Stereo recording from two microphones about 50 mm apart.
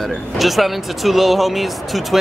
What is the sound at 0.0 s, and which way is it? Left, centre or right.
Speech, centre.